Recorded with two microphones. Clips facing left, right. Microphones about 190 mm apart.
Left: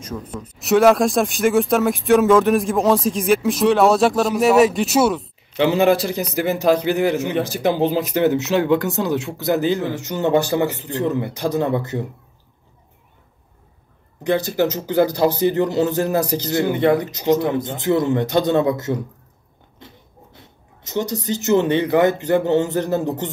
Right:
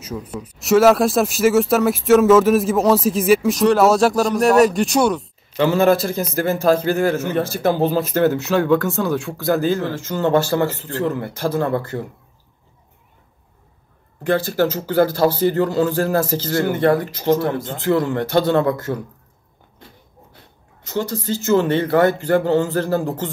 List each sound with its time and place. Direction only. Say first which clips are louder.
0.0 s speech: right 1 dB; 10° right (ahead or behind)
5.6 s speech: even; 15° left (ahead or behind)
14.2 s speech: right 1 dB; 20° left (ahead or behind)
20.3 s speech: left 2 dB; 20° left (ahead or behind)